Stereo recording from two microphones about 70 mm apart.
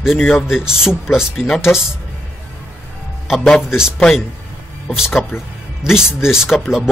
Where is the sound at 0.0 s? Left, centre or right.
Centre.